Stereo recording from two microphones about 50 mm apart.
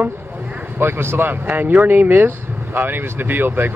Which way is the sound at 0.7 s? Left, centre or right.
Right.